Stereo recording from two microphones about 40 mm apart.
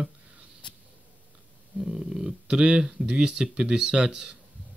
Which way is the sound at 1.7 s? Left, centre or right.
Centre.